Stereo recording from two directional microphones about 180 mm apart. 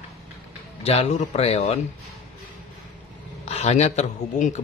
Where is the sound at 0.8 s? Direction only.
35° left (ahead or behind).